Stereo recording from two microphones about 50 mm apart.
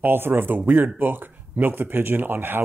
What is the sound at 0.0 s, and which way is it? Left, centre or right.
Speech, right.